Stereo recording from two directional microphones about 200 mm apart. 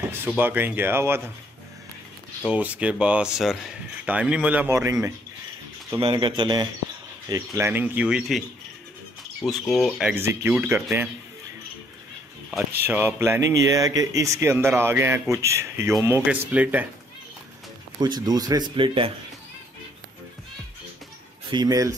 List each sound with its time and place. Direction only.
0.1 s speech: 10° right (ahead or behind)
2.4 s speech: 5° right (ahead or behind)
5.9 s speech: 25° right (ahead or behind)
12.8 s speech: 10° right (ahead or behind)
18.0 s speech: 20° right (ahead or behind)
21.5 s speech: 20° right (ahead or behind)